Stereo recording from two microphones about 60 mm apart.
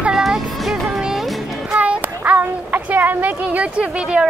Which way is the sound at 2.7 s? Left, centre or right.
Right.